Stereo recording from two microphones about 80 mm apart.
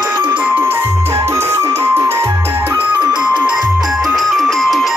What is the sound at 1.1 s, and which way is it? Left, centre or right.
Music, right.